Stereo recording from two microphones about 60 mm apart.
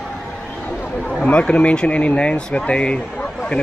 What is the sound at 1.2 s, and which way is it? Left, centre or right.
Speech, centre.